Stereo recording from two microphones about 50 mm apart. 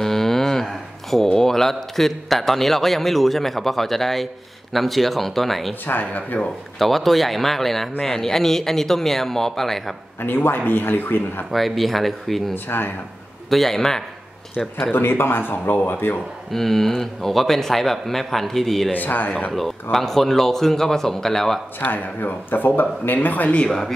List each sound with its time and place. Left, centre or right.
0.0 s speech: centre
5.9 s speech: left
6.8 s speech: centre
10.2 s speech: left
11.5 s speech: centre
12.6 s speech: left
13.5 s speech: centre
14.9 s speech: left
16.5 s speech: centre
18.9 s speech: left
19.5 s speech: centre
21.7 s speech: left
23.6 s speech: centre